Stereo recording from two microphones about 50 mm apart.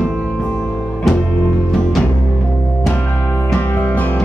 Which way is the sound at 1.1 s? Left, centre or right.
Centre.